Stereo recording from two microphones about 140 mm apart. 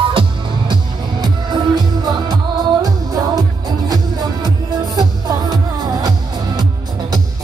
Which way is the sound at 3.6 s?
30° right (ahead or behind).